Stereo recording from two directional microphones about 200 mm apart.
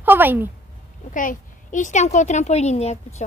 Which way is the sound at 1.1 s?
40° left (ahead or behind).